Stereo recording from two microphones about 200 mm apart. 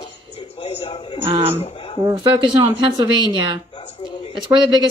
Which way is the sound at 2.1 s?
25° right (ahead or behind).